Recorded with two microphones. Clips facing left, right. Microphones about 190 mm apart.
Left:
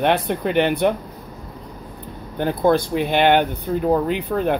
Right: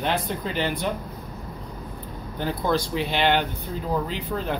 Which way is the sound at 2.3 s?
55° left (ahead or behind).